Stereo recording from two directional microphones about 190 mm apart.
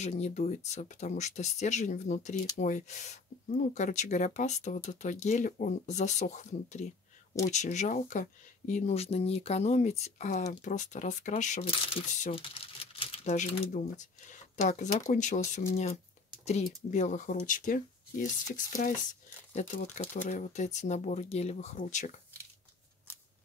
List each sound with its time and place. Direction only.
0.0 s speech: 35° left (ahead or behind)
19.5 s speech: 40° left (ahead or behind)